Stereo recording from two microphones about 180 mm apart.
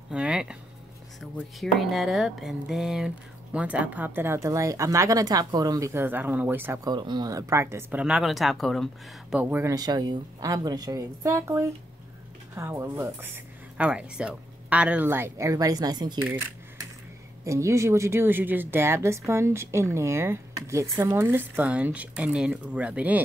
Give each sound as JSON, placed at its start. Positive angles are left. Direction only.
{"t": 0.1, "sound": "a sound", "side_deg": -5}
{"t": 1.2, "sound": "speech", "side_deg": 0}
{"t": 9.4, "sound": "speech", "side_deg": -10}
{"t": 17.5, "sound": "speech", "side_deg": -15}